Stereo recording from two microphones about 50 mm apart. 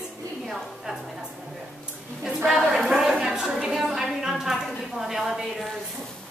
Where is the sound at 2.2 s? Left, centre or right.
Centre.